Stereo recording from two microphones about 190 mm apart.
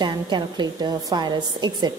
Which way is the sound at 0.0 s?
25° right (ahead or behind).